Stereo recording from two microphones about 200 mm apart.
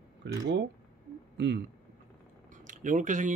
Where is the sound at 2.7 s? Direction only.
40° right (ahead or behind).